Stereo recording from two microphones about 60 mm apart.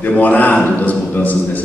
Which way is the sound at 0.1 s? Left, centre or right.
Left.